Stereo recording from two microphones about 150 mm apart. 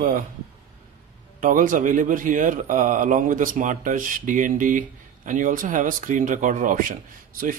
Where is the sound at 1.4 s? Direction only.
65° right (ahead or behind).